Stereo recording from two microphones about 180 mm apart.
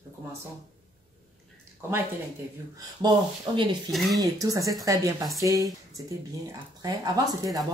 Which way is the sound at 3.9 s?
Centre (ahead or behind).